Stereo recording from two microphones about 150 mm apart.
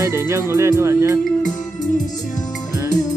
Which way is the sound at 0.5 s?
20° right (ahead or behind).